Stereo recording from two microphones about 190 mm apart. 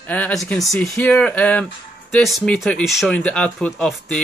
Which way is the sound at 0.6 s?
15° left (ahead or behind).